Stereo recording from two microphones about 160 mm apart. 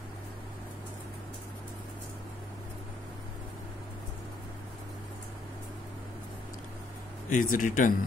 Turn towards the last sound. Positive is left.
turn(degrees=55)  # may be behind; listen again after turning